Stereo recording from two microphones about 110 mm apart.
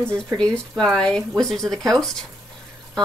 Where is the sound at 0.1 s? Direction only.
10° left (ahead or behind).